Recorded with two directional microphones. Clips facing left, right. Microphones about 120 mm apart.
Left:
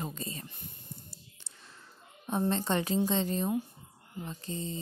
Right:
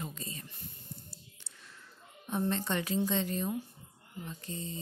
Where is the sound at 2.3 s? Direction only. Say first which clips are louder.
Left 3 dB; 30° left (ahead or behind).